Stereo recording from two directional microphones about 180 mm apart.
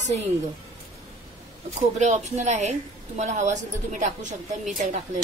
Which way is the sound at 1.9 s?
40° right (ahead or behind).